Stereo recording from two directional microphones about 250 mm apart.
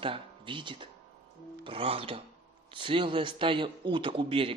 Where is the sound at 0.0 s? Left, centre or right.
Centre.